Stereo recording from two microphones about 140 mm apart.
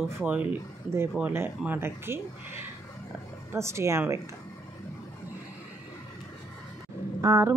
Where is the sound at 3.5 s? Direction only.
20° right (ahead or behind).